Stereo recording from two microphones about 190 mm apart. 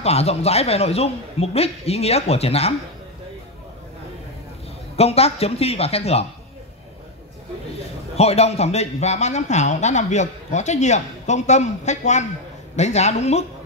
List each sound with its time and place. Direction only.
0.0 s speech: 35° left (ahead or behind)
4.9 s speech: 30° left (ahead or behind)
8.2 s speech: 35° left (ahead or behind)